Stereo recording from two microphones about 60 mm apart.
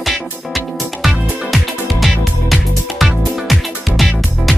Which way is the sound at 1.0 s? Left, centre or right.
Centre.